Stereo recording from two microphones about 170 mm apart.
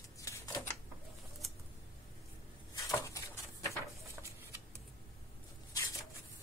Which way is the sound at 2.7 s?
20° left (ahead or behind).